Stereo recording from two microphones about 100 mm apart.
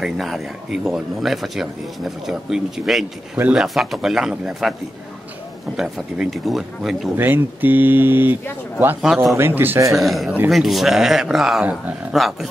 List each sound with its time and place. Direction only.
0.0 s speech: centre (ahead or behind)
5.8 s speech: 5° right (ahead or behind)
7.2 s speech: 20° right (ahead or behind)
9.0 s speech: centre (ahead or behind)
9.3 s speech: 20° right (ahead or behind)
9.9 s speech: centre (ahead or behind)